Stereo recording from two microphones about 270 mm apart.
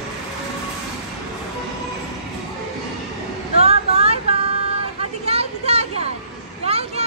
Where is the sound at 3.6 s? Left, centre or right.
Right.